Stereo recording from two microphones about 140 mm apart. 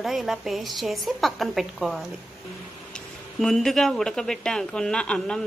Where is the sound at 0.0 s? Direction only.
Centre (ahead or behind).